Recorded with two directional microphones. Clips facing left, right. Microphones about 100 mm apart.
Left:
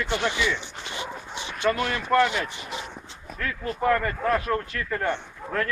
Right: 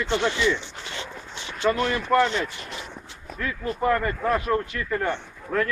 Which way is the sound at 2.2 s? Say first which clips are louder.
Even; 10° left (ahead or behind).